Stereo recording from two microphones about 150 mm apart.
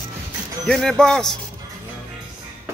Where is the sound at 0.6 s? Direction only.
5° left (ahead or behind).